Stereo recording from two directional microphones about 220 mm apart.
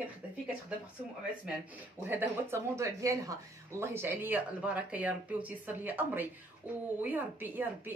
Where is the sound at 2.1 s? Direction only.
10° right (ahead or behind).